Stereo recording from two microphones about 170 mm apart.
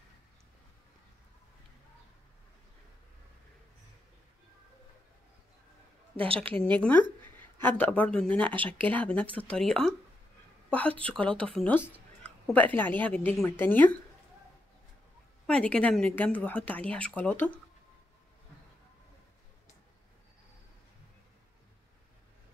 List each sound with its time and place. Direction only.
6.1 s a woman's voice: 35° right (ahead or behind)
6.8 s a woman's voice: 10° left (ahead or behind)
15.4 s speech: 5° left (ahead or behind)